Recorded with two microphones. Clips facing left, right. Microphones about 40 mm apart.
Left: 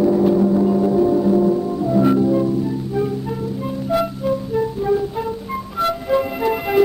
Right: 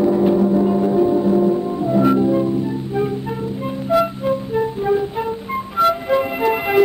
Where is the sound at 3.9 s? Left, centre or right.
Right.